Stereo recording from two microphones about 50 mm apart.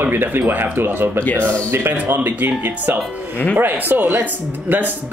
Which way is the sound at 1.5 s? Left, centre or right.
Right.